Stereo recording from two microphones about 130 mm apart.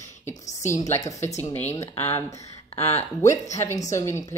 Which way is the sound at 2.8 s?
55° left (ahead or behind).